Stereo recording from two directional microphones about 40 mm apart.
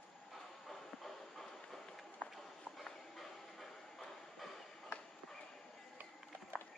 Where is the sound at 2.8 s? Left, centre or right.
Centre.